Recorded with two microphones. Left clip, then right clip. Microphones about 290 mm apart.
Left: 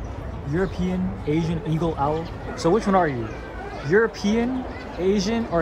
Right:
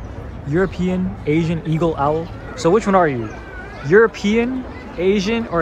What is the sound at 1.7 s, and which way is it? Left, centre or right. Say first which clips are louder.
Speech: right 6 dB; centre.